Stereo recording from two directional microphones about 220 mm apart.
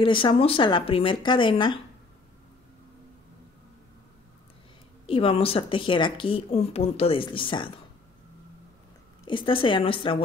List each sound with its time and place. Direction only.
0.0 s speech: 25° left (ahead or behind)
5.0 s speech: 25° left (ahead or behind)
9.2 s speech: 20° left (ahead or behind)